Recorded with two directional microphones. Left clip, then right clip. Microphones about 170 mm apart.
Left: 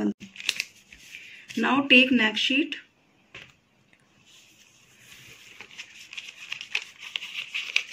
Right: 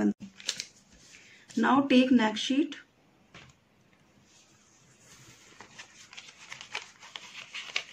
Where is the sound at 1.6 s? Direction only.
15° right (ahead or behind).